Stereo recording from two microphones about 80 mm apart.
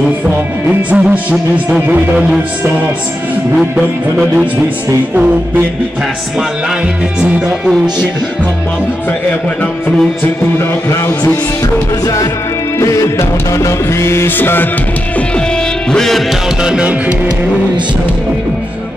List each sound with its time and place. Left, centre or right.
0.7 s music: centre
3.5 s music: centre
7.2 s music: centre
10.9 s music: left
12.7 s music: left
15.9 s music: centre
16.6 s music: centre